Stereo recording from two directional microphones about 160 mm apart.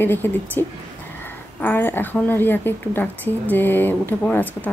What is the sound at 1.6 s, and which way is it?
Speech, 15° left (ahead or behind).